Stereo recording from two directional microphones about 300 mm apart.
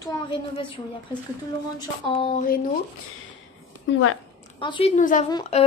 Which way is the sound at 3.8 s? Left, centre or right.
Left.